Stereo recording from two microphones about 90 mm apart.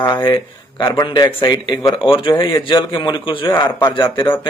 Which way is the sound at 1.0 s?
60° left (ahead or behind).